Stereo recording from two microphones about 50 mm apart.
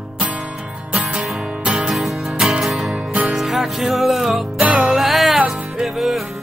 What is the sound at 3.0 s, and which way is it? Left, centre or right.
Music, right.